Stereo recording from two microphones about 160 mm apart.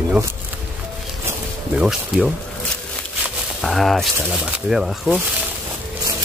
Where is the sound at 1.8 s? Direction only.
5° right (ahead or behind).